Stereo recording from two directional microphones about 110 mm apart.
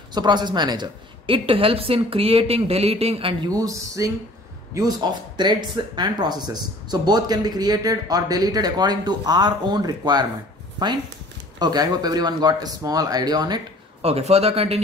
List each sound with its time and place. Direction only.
0.1 s a woman's voice: 40° right (ahead or behind); by 3.3 s 60° right (ahead or behind)
3.4 s speech: 35° right (ahead or behind)
11.6 s speech: 35° right (ahead or behind)
14.0 s speech: 70° right (ahead or behind)